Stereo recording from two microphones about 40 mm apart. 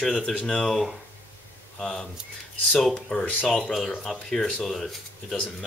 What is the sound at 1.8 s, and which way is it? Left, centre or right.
Speech, centre.